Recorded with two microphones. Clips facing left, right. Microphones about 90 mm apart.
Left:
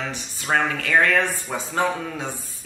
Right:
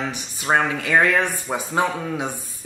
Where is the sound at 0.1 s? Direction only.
15° right (ahead or behind).